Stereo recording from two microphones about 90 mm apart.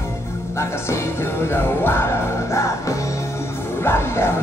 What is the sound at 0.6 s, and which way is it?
Music, 30° left (ahead or behind).